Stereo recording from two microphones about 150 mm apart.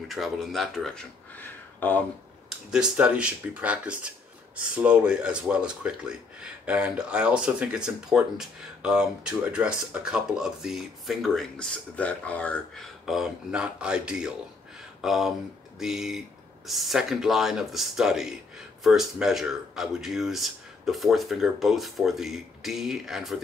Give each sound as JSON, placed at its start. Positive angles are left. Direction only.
{"t": 0.1, "sound": "speech", "side_deg": 0}
{"t": 2.7, "sound": "speech", "side_deg": -5}